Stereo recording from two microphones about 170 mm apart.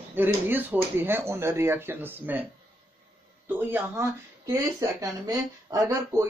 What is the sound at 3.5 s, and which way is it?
Speech, 10° right (ahead or behind).